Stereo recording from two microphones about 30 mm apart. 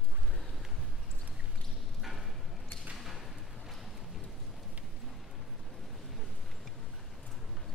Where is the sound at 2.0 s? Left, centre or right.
Centre.